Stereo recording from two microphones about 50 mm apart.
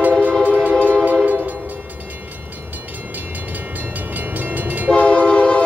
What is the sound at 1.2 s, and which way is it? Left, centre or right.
Train, right.